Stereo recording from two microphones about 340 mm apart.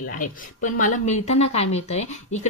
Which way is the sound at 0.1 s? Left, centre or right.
Left.